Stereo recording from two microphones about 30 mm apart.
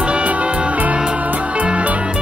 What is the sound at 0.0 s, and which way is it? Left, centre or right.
Music, right.